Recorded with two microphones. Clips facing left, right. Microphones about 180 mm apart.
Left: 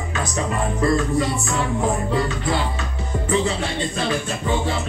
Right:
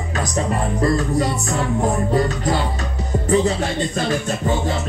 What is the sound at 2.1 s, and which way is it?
Music, 40° right (ahead or behind).